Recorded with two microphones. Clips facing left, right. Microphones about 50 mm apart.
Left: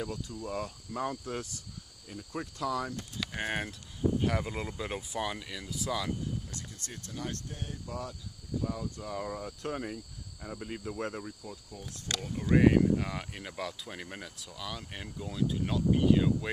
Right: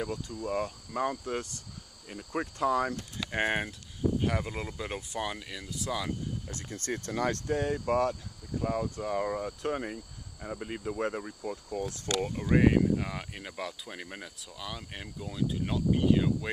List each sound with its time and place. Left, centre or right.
0.0 s speech: centre
0.5 s cricket: right
3.3 s speech: right
4.2 s speech: centre
6.5 s speech: right
6.9 s speech: right
8.5 s speech: right
9.7 s cricket: centre
10.4 s speech: centre
11.7 s speech: right
12.2 s cricket: right
12.4 s speech: centre